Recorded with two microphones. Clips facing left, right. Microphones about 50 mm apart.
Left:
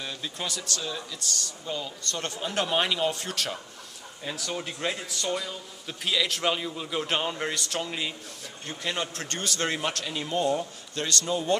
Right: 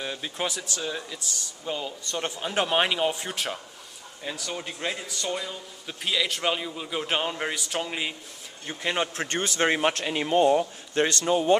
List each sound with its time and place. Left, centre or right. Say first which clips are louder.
0.0 s speech: right 4 dB; right
4.2 s a man's voice: even; centre; by 11.5 s right